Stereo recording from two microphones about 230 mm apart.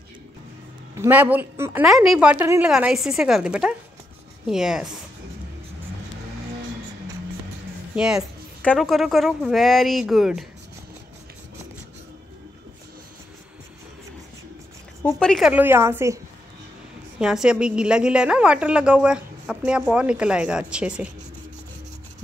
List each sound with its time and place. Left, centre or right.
0.9 s a woman's voice: centre
7.9 s a woman's voice: centre
15.0 s a woman's voice: centre
17.2 s a woman's voice: centre